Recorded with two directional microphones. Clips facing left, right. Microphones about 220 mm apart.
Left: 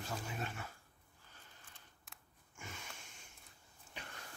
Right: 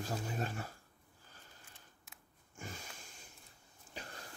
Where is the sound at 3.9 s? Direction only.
35° right (ahead or behind).